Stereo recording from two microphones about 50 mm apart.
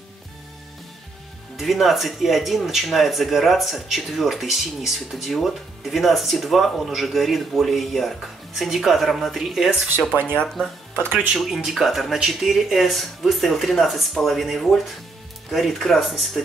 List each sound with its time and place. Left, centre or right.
1.6 s speech: centre
10.2 s speech: centre
11.3 s speech: centre